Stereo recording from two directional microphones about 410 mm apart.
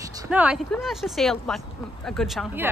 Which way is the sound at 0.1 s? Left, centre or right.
Centre.